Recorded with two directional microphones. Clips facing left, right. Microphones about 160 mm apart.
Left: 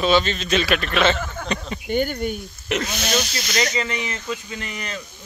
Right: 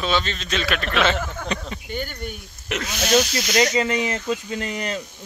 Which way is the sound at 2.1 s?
15° left (ahead or behind).